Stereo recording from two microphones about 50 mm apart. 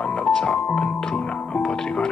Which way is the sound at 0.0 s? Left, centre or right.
Centre.